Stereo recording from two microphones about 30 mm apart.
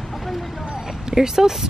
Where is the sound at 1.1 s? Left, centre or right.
Centre.